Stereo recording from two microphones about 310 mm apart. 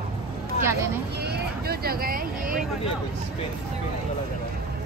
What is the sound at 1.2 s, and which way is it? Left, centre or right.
Vehicle, right.